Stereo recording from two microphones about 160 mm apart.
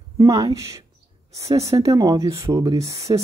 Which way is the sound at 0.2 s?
20° right (ahead or behind).